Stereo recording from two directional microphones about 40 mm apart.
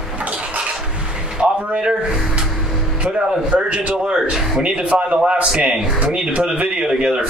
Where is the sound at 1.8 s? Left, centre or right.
Right.